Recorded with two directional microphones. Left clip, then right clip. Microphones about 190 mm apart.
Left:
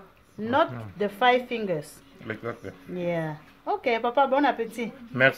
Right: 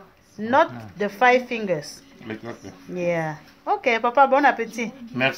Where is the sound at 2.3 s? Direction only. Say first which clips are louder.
Right 1 dB; 40° left (ahead or behind).